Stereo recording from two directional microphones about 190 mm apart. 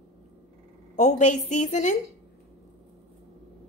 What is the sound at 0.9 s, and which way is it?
A woman's voice, 40° left (ahead or behind).